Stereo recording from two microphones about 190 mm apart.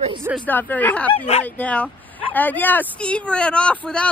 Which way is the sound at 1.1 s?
35° left (ahead or behind).